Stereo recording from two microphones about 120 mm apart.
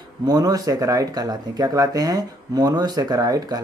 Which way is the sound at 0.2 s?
30° right (ahead or behind).